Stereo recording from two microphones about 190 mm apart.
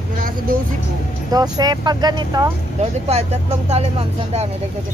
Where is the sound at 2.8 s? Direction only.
35° right (ahead or behind).